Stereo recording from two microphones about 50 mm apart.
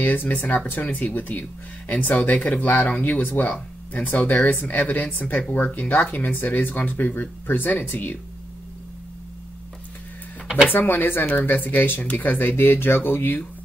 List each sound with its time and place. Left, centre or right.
0.0 s speech: left
10.7 s speech: left